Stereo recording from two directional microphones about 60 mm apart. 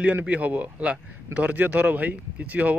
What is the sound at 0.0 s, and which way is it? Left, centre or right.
Speech, right.